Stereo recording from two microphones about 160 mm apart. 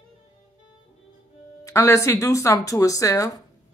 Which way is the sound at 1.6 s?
20° left (ahead or behind).